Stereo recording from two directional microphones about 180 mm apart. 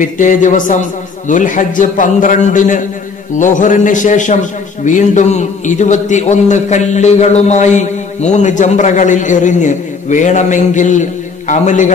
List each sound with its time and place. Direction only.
0.0 s a man's voice: 45° left (ahead or behind)